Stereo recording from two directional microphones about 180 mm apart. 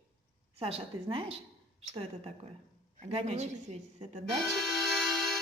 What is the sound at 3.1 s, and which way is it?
Speech, 40° right (ahead or behind).